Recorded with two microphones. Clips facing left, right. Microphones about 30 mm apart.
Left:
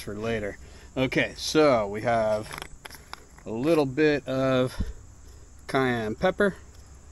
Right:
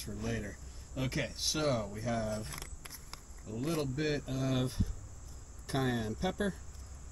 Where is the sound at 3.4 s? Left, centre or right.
Left.